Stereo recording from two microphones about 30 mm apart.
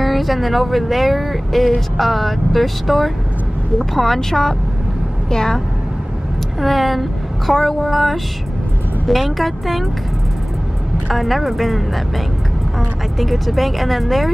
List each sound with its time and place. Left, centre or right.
0.0 s a woman's voice: centre; by 5.6 s left
6.6 s a woman's voice: centre
11.1 s speech: centre
13.2 s speech: centre